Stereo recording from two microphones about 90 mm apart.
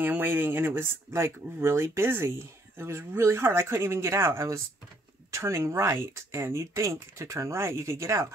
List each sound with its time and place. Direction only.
0.0 s speech: 20° right (ahead or behind)